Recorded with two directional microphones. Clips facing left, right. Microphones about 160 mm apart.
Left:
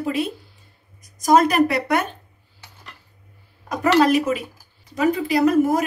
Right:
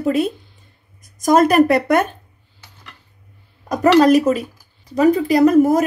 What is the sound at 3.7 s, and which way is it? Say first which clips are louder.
Speech: right 5 dB; 40° right (ahead or behind).